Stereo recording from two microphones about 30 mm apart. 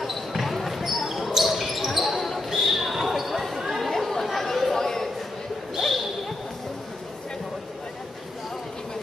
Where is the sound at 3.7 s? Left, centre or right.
Centre.